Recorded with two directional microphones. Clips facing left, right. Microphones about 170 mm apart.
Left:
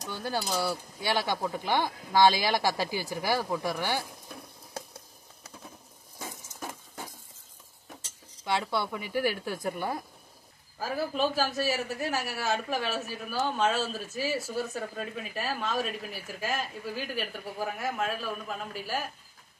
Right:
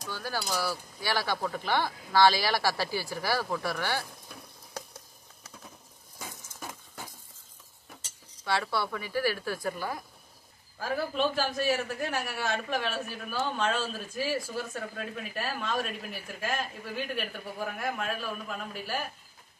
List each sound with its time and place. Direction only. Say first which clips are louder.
0.1 s speech: left 2 dB; 25° left (ahead or behind)
8.5 s speech: even; 20° left (ahead or behind)
10.8 s a man's voice: even; 5° left (ahead or behind)